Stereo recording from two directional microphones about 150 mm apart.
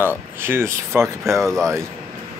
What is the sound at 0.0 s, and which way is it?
Speech, 15° right (ahead or behind).